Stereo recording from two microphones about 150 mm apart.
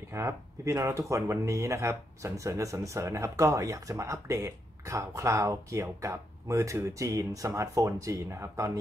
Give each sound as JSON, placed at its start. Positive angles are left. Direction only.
{"t": 0.1, "sound": "speech", "side_deg": -20}